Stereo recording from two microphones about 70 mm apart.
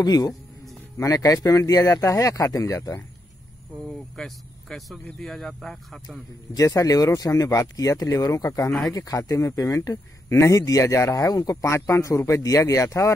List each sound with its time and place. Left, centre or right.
0.0 s speech: left
0.9 s speech: left
3.8 s speech: centre
6.5 s speech: left